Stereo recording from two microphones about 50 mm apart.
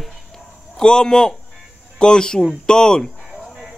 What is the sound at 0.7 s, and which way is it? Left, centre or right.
Speech, centre.